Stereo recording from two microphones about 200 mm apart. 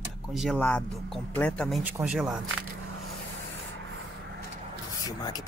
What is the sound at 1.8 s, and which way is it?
Speech, 5° right (ahead or behind).